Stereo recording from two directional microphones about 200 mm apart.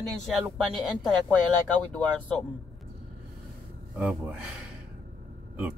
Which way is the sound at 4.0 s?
5° right (ahead or behind).